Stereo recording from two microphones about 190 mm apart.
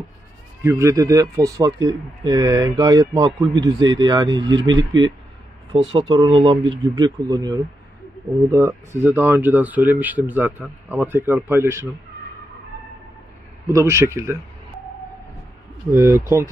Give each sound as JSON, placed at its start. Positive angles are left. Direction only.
{"t": 0.6, "sound": "speech", "side_deg": -15}
{"t": 13.7, "sound": "speech", "side_deg": -15}
{"t": 15.9, "sound": "speech", "side_deg": -10}